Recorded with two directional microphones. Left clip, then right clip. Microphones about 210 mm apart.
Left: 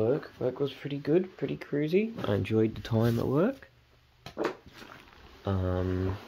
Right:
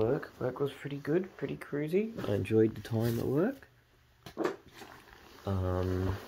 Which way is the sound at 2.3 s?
15° left (ahead or behind).